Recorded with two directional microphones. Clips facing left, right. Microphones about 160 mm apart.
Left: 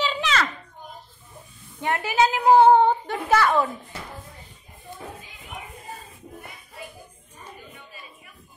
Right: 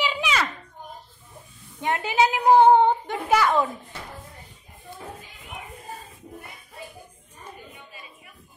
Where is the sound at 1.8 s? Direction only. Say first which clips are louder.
Even; 20° right (ahead or behind).